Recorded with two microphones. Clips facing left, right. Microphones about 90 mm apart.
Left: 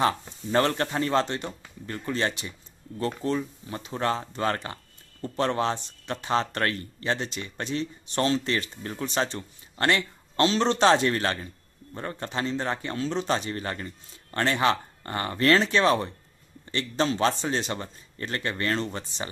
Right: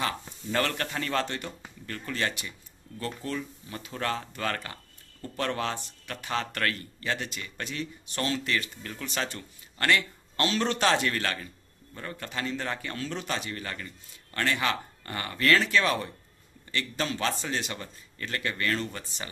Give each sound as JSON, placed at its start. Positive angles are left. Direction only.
{"t": 0.0, "sound": "speech", "side_deg": 30}